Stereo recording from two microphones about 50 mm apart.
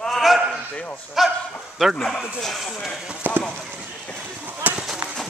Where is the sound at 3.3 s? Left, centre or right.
Right.